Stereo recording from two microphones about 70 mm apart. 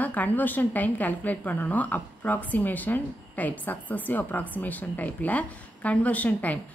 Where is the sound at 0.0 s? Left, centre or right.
Left.